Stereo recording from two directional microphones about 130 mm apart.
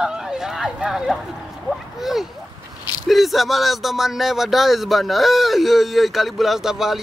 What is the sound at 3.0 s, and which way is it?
Speech, centre (ahead or behind).